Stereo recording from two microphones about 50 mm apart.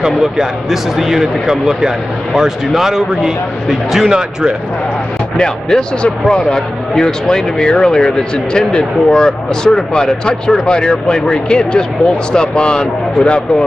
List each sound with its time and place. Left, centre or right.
0.0 s speech: centre
5.4 s speech: centre